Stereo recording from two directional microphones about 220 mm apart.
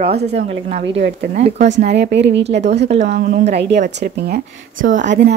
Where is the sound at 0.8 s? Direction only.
50° right (ahead or behind).